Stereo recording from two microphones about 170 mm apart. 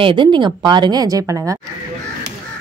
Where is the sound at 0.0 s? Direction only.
30° right (ahead or behind).